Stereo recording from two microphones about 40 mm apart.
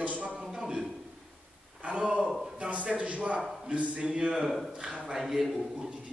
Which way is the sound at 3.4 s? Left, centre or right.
Centre.